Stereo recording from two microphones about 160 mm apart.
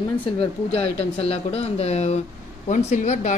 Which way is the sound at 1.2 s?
40° left (ahead or behind).